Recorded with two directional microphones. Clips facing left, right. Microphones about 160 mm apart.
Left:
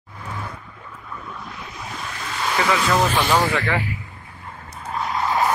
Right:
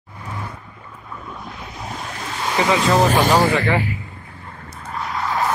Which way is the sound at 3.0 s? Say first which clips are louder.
Right 4 dB; 40° right (ahead or behind).